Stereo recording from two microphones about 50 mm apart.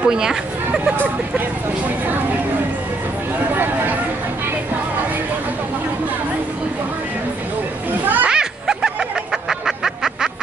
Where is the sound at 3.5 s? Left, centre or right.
Right.